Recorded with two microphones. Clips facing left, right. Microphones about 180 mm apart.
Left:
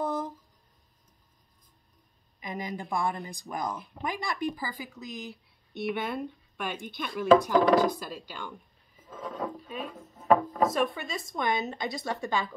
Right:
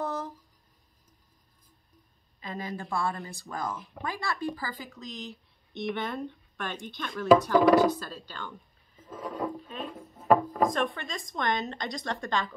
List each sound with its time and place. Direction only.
0.0 s a sound: 15° left (ahead or behind)
2.4 s speech: 15° left (ahead or behind)
7.6 s speech: 10° right (ahead or behind)
7.9 s speech: 10° left (ahead or behind)
9.1 s a sound: 10° right (ahead or behind)
9.9 s speech: 5° right (ahead or behind)